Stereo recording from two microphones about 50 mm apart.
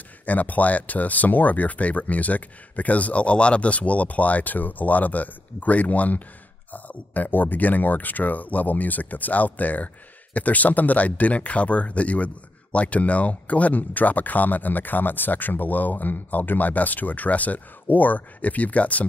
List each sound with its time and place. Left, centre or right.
0.2 s speech: left